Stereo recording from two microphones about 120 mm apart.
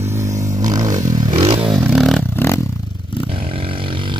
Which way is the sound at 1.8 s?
5° right (ahead or behind).